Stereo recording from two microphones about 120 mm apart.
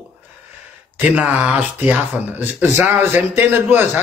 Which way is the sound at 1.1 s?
10° right (ahead or behind).